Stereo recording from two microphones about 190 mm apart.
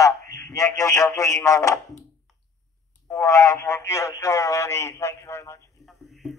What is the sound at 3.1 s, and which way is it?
Speech, 15° left (ahead or behind).